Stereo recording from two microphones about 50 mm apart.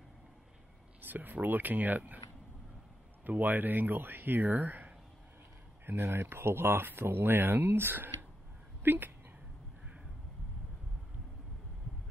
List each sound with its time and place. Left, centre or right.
1.0 s speech: right
3.3 s speech: right
6.0 s speech: right